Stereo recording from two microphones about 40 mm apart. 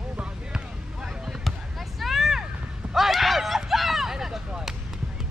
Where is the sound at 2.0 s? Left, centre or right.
Centre.